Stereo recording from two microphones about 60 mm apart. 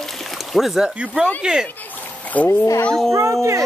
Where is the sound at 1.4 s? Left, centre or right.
Centre.